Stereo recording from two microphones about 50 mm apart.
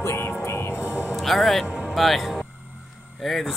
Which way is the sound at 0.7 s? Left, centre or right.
Right.